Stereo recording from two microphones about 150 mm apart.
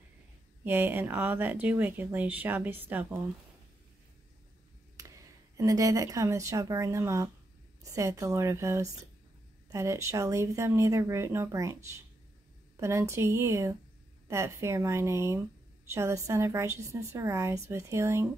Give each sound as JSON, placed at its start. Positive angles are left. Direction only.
{"t": 0.7, "sound": "speech", "side_deg": -15}
{"t": 4.9, "sound": "speech", "side_deg": -20}